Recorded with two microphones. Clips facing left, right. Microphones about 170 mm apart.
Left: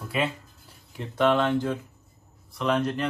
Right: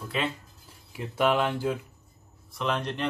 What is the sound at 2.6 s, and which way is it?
Speech, centre (ahead or behind).